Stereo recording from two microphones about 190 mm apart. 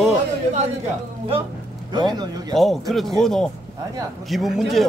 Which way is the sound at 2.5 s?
Centre (ahead or behind).